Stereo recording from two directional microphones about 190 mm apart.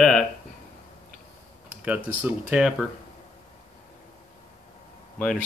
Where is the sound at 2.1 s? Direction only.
10° right (ahead or behind).